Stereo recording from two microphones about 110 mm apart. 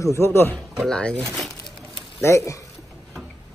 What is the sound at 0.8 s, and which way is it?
Speech, 10° left (ahead or behind).